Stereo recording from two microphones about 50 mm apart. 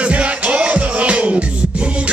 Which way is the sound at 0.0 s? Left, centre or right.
Right.